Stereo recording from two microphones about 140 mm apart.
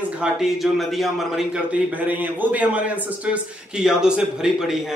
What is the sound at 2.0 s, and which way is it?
Speech, 10° right (ahead or behind).